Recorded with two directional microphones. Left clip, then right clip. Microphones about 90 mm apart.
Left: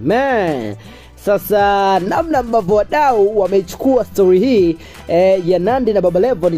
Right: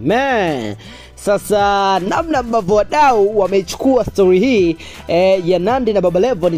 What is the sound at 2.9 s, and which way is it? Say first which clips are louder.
Speech: right 3 dB; 55° right (ahead or behind).